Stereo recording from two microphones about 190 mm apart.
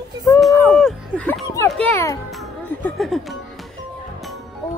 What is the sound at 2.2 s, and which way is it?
Music, centre (ahead or behind).